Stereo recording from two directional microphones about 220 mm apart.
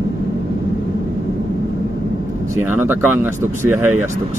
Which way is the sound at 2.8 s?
10° right (ahead or behind).